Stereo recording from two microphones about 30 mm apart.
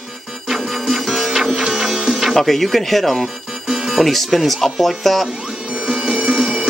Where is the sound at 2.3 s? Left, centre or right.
Centre.